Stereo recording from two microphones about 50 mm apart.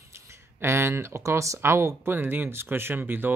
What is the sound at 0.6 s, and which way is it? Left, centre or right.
Speech, right.